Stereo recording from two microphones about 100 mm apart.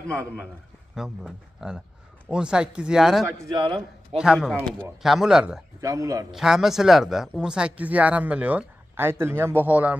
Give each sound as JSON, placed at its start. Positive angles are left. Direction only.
{"t": 0.9, "sound": "speech", "side_deg": -5}
{"t": 3.5, "sound": "a man's voice", "side_deg": -55}
{"t": 4.2, "sound": "speech", "side_deg": -5}
{"t": 4.5, "sound": "speech", "side_deg": 10}
{"t": 5.0, "sound": "speech", "side_deg": -5}
{"t": 5.8, "sound": "a man's voice", "side_deg": -35}
{"t": 6.3, "sound": "speech", "side_deg": -5}